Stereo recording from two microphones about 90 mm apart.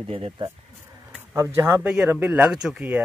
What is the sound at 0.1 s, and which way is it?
Speech, 90° right.